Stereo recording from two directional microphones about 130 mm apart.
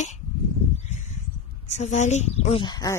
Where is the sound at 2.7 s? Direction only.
30° left (ahead or behind).